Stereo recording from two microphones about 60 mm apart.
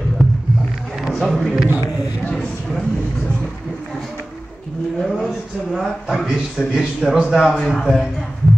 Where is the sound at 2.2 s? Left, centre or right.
Centre.